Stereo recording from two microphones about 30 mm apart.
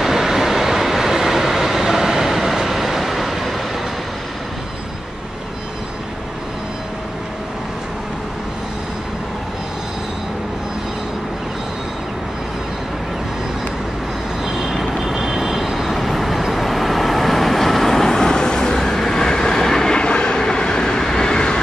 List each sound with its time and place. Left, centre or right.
0.0 s train: centre
14.4 s vehicle: centre; by 21.5 s left